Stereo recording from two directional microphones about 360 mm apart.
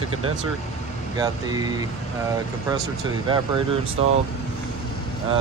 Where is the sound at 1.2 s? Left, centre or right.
Centre.